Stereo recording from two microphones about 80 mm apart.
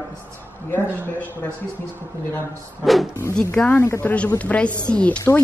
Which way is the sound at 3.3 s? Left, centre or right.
Centre.